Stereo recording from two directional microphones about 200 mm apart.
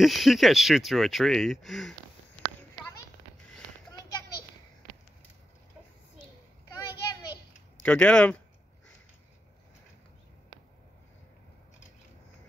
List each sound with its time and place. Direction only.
0.0 s speech: centre (ahead or behind)
6.8 s a sound: 20° left (ahead or behind)
7.8 s speech: 5° left (ahead or behind)